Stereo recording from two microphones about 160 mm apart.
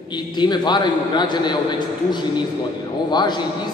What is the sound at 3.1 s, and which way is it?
Speech, 25° left (ahead or behind).